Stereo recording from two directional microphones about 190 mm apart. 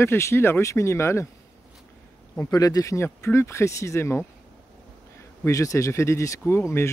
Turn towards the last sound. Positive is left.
turn(degrees=15)  # may be behind; listen again after turning